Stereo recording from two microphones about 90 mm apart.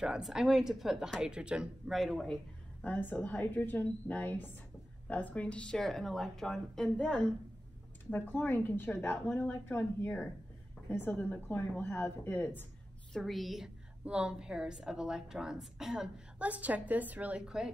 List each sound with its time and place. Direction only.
0.0 s a woman's voice: 5° right (ahead or behind)
2.8 s a woman's voice: 20° left (ahead or behind)
13.1 s a woman's voice: centre (ahead or behind)
16.3 s a woman's voice: 15° right (ahead or behind)